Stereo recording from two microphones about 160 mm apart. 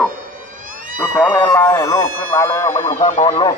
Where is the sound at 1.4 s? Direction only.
15° left (ahead or behind).